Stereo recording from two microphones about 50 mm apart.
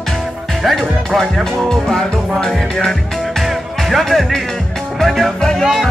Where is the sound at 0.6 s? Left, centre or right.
Centre.